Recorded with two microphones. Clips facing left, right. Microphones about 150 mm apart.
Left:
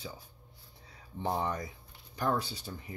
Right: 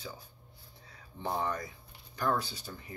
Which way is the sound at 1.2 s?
20° left (ahead or behind).